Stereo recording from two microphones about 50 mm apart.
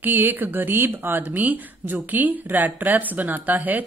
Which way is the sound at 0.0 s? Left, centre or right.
Right.